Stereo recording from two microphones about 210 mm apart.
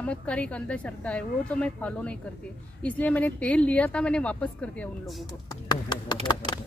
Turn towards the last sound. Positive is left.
turn(degrees=20)  # may be behind; listen again after turning